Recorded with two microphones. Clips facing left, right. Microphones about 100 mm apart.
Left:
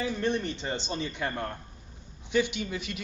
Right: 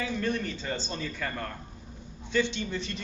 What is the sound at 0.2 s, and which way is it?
A man's voice, 25° left (ahead or behind).